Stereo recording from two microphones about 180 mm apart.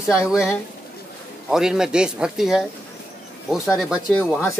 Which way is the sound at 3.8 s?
Centre (ahead or behind).